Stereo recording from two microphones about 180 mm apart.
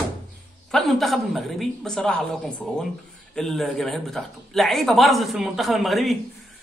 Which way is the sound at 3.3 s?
Centre (ahead or behind).